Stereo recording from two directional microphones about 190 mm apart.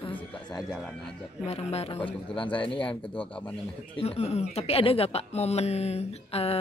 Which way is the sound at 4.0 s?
30° left (ahead or behind).